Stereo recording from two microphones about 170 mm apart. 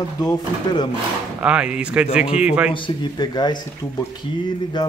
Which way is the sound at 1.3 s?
5° right (ahead or behind).